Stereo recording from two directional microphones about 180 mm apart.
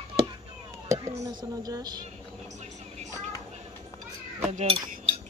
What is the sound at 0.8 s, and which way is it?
Speech, 20° right (ahead or behind).